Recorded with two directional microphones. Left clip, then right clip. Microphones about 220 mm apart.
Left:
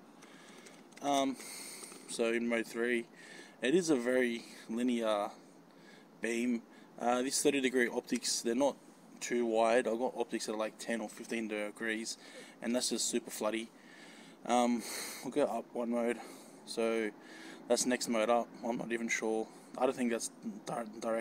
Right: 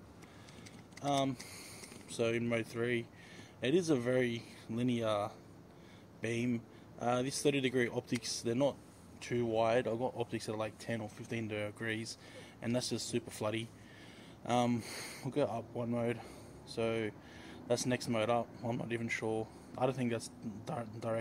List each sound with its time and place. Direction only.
1.0 s speech: 20° left (ahead or behind)